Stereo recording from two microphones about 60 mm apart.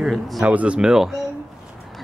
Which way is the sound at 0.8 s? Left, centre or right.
Centre.